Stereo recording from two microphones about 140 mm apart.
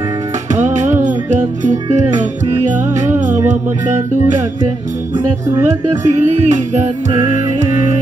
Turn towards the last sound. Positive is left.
turn(degrees=-55)  # may be behind; listen again after turning